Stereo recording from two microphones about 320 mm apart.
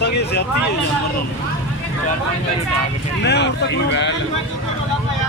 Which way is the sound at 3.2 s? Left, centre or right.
Left.